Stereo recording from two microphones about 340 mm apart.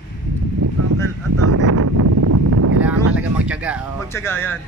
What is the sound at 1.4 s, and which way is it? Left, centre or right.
Wind noise, right.